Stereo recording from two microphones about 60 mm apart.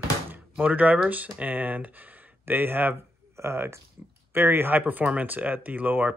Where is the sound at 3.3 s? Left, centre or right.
Right.